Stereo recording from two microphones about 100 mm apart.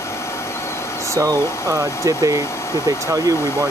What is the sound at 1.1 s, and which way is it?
Speech, 35° right (ahead or behind).